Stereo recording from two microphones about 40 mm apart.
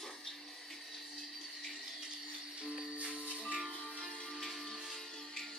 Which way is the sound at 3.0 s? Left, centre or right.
Right.